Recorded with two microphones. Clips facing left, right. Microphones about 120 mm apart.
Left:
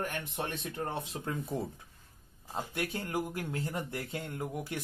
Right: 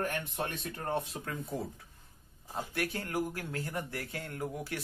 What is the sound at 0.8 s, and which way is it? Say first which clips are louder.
Speech: right 4 dB; 25° left (ahead or behind).